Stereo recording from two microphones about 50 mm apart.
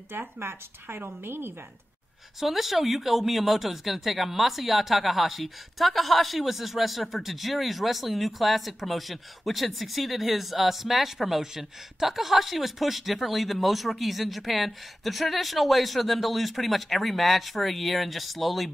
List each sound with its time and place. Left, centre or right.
0.4 s a woman's voice: right
2.4 s speech: centre